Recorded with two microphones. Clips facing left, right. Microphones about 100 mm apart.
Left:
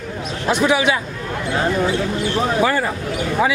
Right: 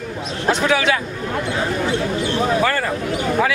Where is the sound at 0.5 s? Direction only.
15° left (ahead or behind).